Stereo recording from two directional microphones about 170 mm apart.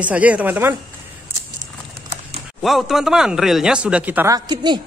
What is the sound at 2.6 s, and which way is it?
A man's voice, centre (ahead or behind).